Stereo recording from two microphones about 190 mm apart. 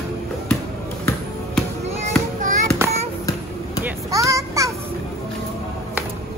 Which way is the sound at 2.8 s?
15° right (ahead or behind).